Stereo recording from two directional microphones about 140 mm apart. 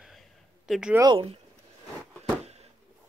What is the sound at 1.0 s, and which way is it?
Speech, 40° right (ahead or behind).